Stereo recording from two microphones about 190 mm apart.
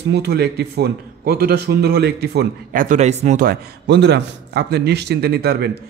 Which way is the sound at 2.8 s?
35° right (ahead or behind).